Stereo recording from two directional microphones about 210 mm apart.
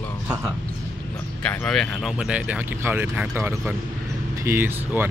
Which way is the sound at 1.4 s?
5° left (ahead or behind).